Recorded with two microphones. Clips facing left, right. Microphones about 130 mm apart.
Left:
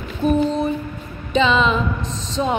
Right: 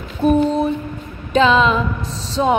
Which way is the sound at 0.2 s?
10° right (ahead or behind).